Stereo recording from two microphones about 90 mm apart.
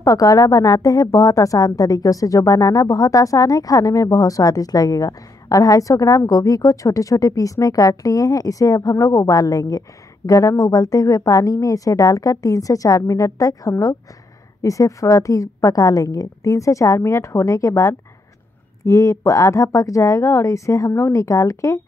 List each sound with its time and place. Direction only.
0.0 s a woman's voice: 40° left (ahead or behind)